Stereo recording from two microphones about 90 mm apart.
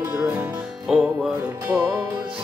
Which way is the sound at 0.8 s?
5° right (ahead or behind).